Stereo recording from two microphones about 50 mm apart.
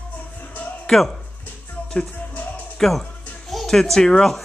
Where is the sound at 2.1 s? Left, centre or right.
Left.